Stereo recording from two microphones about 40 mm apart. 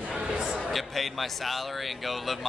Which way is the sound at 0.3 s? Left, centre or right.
Right.